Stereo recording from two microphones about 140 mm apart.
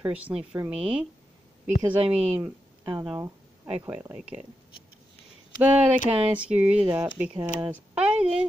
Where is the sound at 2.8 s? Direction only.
30° right (ahead or behind).